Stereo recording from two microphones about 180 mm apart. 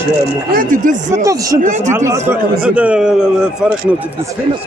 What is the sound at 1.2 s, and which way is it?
Speech, 20° right (ahead or behind).